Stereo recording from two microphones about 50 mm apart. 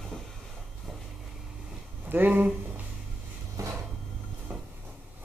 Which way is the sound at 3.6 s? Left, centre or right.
Right.